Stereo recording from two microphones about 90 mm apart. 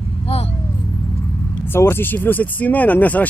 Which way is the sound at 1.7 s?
25° left (ahead or behind).